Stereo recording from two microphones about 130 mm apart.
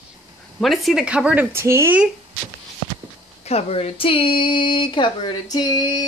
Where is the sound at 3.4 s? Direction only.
55° left (ahead or behind).